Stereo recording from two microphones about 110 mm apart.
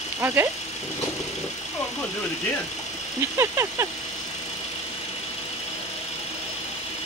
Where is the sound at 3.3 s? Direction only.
25° right (ahead or behind).